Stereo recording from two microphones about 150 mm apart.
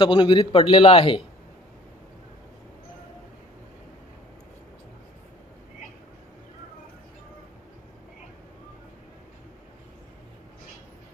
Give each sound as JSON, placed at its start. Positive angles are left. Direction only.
{"t": 0.0, "sound": "a man's voice", "side_deg": 30}